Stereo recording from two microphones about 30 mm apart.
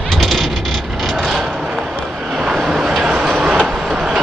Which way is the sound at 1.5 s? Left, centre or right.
Centre.